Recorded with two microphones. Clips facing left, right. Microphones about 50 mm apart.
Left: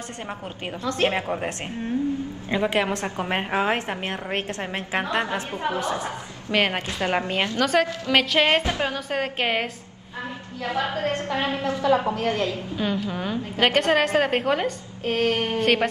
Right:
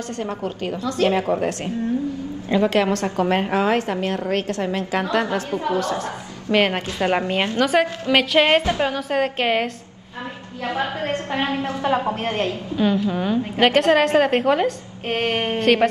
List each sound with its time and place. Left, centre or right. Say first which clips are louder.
0.8 s a woman's voice: right 3 dB; left
2.5 s a woman's voice: right 5 dB; centre
6.5 s a woman's voice: right 4 dB; centre
7.0 s a woman's voice: right 4 dB; right
7.6 s a woman's voice: right 3 dB; centre
10.6 s a woman's voice: right 1 dB; right
12.7 s a woman's voice: right 10 dB; centre
15.0 s a sound: right 1 dB; right
15.6 s speech: right 5 dB; centre